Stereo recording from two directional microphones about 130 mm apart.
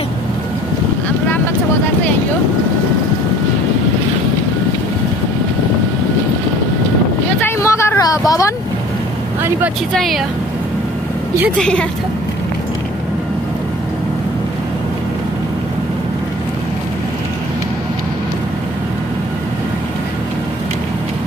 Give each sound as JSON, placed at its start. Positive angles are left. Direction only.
{"t": 7.3, "sound": "vehicle", "side_deg": 20}
{"t": 9.9, "sound": "speech", "side_deg": 0}
{"t": 11.5, "sound": "a woman's voice", "side_deg": 5}